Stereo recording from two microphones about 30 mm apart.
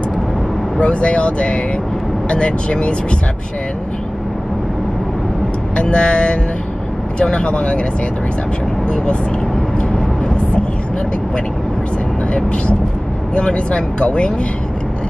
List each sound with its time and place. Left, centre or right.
0.7 s speech: left
5.8 s speech: left
13.3 s speech: left